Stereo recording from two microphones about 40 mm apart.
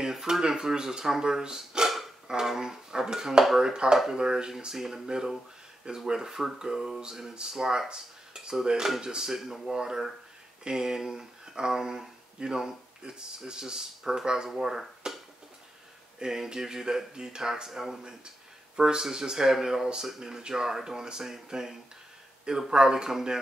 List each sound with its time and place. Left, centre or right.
0.0 s speech: centre
7.9 s dishes: centre
9.0 s speech: centre
16.2 s speech: centre